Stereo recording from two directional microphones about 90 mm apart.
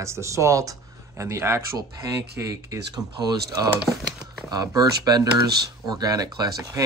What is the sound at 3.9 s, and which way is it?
Speech, centre (ahead or behind).